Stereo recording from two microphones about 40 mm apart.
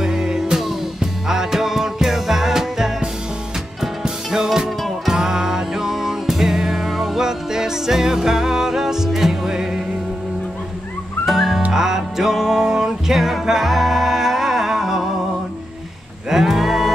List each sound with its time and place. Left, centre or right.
0.0 s music: centre
4.0 s music: centre
11.2 s music: centre
16.3 s music: centre